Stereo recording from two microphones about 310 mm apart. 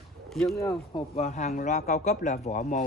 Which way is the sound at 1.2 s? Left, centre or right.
Left.